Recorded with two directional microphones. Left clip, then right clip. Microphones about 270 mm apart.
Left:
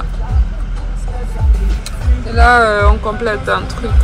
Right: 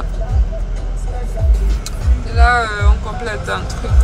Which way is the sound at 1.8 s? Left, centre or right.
Centre.